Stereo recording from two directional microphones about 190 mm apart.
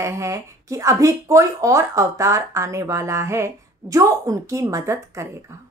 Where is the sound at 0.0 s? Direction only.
15° right (ahead or behind).